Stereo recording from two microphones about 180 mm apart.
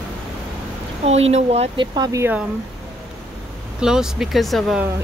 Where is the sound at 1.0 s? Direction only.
35° right (ahead or behind); by 2.4 s 10° right (ahead or behind).